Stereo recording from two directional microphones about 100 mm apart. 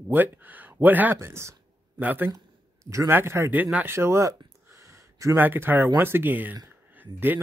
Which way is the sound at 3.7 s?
25° right (ahead or behind).